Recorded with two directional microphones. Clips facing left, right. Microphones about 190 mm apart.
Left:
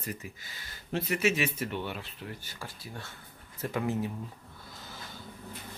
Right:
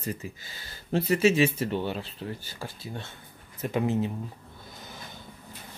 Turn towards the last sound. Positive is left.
turn(degrees=-20)  # may be behind; listen again after turning